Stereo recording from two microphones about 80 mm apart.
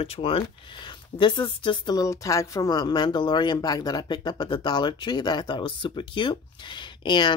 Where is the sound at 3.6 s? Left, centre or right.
Left.